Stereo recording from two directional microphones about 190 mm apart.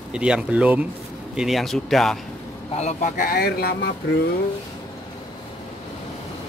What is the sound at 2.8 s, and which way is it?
Speech, 40° left (ahead or behind).